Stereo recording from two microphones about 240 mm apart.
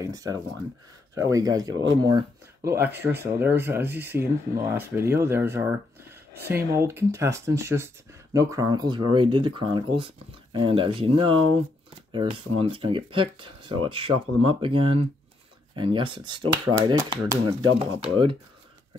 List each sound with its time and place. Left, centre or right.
0.0 s speech: centre